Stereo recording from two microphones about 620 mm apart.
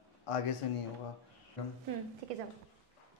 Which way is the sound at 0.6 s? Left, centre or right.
Left.